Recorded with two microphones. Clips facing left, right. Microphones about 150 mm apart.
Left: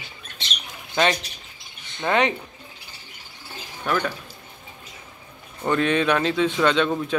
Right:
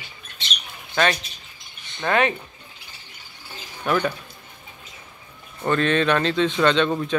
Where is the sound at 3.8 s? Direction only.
5° right (ahead or behind).